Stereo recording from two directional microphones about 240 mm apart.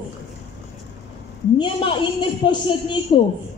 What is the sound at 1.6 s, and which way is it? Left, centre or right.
Speech, centre.